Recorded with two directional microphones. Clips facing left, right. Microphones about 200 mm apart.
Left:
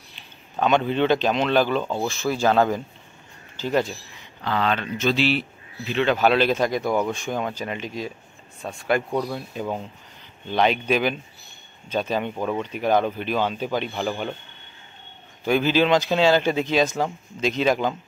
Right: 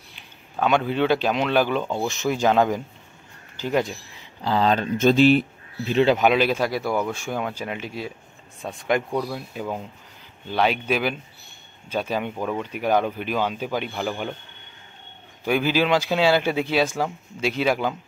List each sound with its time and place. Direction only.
0.6 s speech: 10° right (ahead or behind)
4.4 s speech: 35° right (ahead or behind)
4.9 s speech: 50° right (ahead or behind)
6.1 s speech: 10° right (ahead or behind)
9.3 s speech: 5° right (ahead or behind)
15.4 s speech: 10° right (ahead or behind)